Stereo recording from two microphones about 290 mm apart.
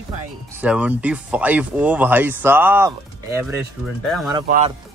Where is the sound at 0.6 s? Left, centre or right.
Centre.